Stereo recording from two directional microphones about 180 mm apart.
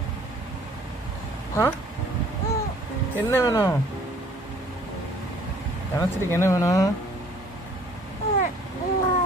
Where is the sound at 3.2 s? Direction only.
15° left (ahead or behind).